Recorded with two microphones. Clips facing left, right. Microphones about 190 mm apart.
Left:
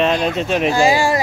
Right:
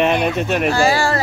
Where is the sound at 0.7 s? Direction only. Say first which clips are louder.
Left 3 dB; 15° left (ahead or behind).